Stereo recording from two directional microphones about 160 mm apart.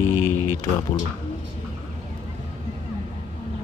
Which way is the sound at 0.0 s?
15° left (ahead or behind).